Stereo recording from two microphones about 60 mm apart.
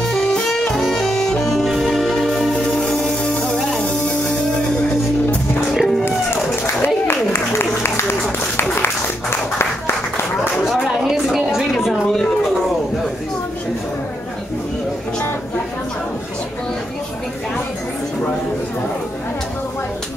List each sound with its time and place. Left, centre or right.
0.1 s music: centre
5.7 s music: centre
7.1 s applause: left
10.6 s a sound: centre